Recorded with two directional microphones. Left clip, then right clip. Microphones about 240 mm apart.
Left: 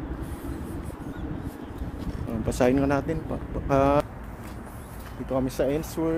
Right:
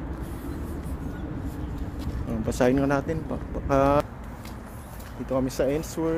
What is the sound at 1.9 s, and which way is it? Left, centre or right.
Speech, centre.